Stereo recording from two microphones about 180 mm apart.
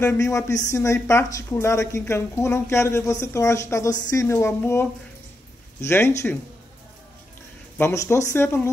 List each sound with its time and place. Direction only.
0.0 s a woman's voice: 15° left (ahead or behind)
7.7 s a woman's voice: 15° left (ahead or behind)